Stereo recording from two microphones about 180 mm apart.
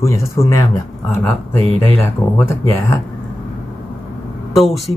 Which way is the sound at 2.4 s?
15° left (ahead or behind).